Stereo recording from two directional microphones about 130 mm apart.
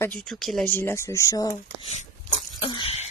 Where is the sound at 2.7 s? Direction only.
40° left (ahead or behind).